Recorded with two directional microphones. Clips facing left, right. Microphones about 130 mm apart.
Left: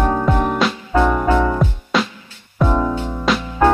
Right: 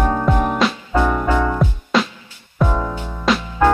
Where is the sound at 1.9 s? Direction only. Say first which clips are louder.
Right 1 dB; centre (ahead or behind).